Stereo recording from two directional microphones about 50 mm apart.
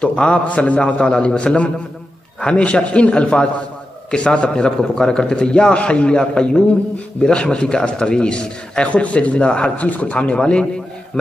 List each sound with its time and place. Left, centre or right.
0.0 s a man's voice: left